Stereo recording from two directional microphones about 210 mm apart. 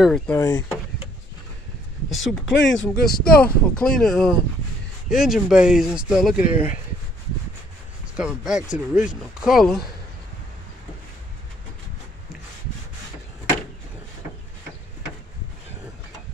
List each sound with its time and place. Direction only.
0.0 s speech: 5° left (ahead or behind)
2.0 s speech: centre (ahead or behind)
2.5 s speech: 60° left (ahead or behind)
3.4 s speech: 5° left (ahead or behind)
8.2 s speech: 5° right (ahead or behind)